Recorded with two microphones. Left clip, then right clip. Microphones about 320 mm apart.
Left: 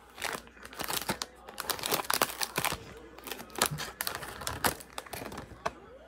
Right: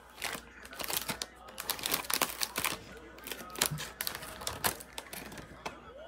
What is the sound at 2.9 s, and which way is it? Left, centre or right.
Typing, centre.